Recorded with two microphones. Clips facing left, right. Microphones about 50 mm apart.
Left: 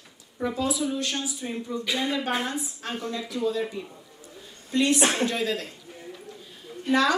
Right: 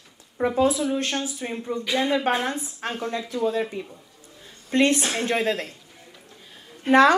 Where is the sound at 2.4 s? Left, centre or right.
Right.